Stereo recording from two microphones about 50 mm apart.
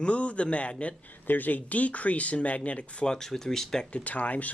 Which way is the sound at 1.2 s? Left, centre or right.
Left.